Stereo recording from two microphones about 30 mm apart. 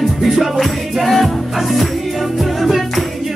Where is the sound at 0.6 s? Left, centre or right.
Centre.